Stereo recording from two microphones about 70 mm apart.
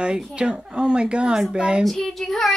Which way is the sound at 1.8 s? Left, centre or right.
Centre.